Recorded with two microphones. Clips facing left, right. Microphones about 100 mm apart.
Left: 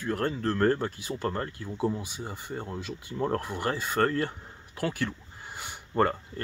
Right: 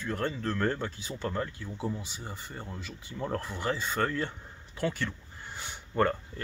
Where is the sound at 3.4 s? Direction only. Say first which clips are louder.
Left 2 dB; 10° left (ahead or behind).